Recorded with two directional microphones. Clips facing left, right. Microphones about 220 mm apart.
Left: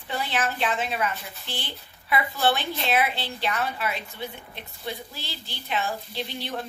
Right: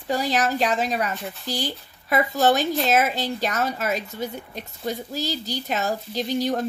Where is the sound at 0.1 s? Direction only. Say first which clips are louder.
Right 6 dB; 40° right (ahead or behind).